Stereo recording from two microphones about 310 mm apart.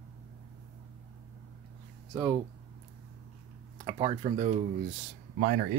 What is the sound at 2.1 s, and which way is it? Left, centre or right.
Speech, centre.